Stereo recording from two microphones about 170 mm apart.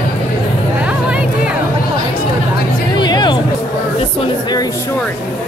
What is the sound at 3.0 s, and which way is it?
Music, 25° left (ahead or behind).